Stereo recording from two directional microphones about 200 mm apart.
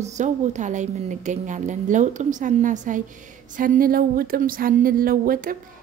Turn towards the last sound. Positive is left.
turn(degrees=-45)  # may be behind; listen again after turning